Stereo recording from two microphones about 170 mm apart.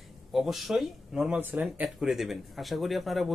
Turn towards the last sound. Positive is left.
turn(degrees=0)  # may be behind; listen again after turning